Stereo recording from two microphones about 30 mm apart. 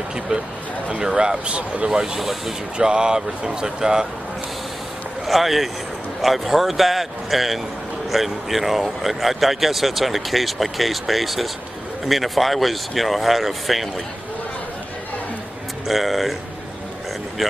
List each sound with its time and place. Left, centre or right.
0.3 s speech: right
1.0 s speech: right
2.1 s speech: centre
2.8 s speech: right
5.2 s speech: centre
15.9 s speech: centre
17.4 s speech: centre